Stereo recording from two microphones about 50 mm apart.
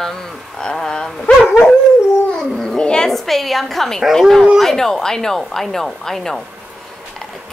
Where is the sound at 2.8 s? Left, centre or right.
Centre.